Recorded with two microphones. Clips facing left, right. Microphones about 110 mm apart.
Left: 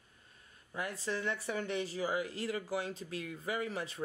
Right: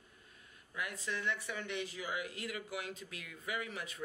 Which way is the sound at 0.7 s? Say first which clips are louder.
Left 3 dB; 35° left (ahead or behind).